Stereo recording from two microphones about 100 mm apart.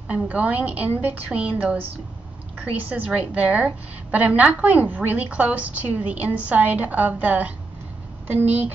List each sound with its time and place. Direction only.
0.1 s a woman's voice: 15° right (ahead or behind)
3.1 s a woman's voice: 15° right (ahead or behind)